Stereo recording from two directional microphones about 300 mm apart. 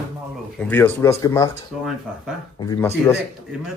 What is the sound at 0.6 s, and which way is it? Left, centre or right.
Speech, centre.